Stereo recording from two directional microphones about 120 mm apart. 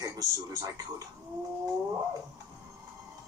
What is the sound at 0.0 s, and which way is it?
Speech, 30° right (ahead or behind).